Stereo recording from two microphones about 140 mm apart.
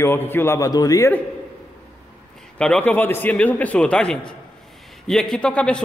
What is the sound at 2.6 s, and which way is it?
A man's voice, 10° left (ahead or behind).